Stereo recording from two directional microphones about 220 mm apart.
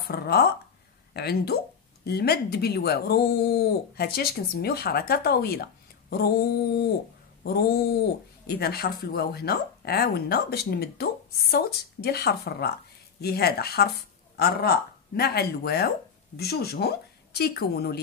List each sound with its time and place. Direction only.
0.1 s speech: 45° left (ahead or behind)